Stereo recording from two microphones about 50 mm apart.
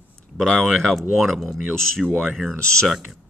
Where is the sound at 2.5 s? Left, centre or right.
Left.